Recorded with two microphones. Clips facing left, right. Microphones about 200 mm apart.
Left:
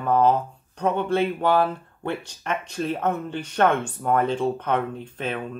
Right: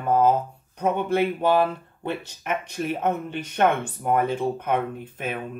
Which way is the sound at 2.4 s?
10° right (ahead or behind).